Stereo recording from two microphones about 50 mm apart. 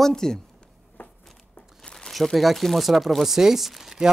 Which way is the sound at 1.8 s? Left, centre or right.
Centre.